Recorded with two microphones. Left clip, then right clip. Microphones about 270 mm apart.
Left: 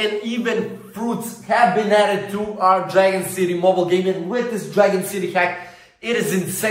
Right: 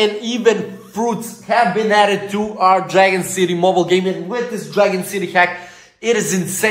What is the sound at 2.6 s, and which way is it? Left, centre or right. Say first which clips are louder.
Speech: right 3 dB; right.